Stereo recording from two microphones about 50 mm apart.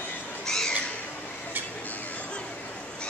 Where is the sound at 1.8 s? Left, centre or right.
Left.